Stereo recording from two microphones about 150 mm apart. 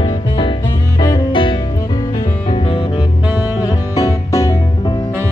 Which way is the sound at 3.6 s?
25° left (ahead or behind).